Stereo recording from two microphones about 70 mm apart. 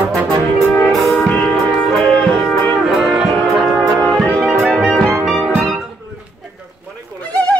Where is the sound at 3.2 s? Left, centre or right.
Centre.